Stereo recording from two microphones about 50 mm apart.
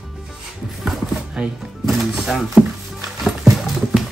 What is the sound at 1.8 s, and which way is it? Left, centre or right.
Music, centre.